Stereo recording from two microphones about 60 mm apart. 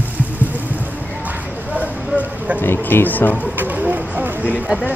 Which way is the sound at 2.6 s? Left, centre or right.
Left.